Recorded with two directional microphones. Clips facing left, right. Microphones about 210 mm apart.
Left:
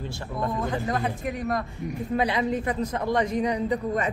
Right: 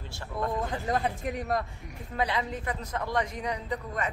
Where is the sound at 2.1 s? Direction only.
15° left (ahead or behind).